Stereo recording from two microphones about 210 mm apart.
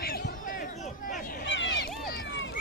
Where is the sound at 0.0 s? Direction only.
45° left (ahead or behind).